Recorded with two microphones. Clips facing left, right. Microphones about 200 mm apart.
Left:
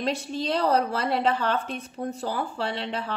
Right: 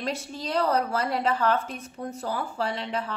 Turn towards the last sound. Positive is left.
turn(degrees=30)  # may be behind; listen again after turning